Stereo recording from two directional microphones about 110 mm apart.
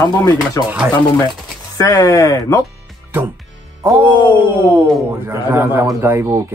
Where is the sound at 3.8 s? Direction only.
20° right (ahead or behind).